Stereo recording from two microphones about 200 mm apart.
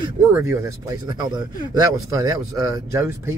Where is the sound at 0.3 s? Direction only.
15° right (ahead or behind).